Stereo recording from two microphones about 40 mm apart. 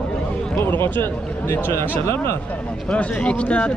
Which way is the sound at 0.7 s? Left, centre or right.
Left.